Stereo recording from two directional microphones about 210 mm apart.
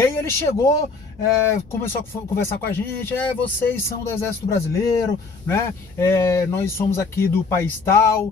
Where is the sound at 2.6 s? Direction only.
10° left (ahead or behind).